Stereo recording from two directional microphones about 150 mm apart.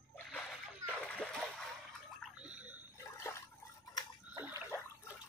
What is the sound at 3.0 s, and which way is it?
Trickle, 20° left (ahead or behind).